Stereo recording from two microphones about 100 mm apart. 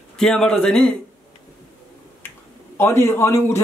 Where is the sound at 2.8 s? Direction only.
25° left (ahead or behind).